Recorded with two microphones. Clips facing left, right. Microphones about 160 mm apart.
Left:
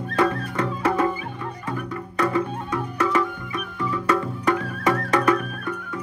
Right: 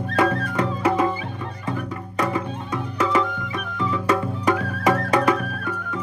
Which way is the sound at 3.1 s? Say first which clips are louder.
Right 1 dB; 20° right (ahead or behind).